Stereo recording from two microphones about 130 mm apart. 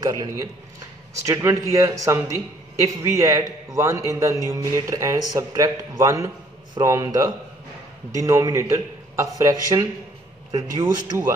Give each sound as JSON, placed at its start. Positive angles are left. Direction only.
{"t": 0.0, "sound": "a man's voice", "side_deg": -30}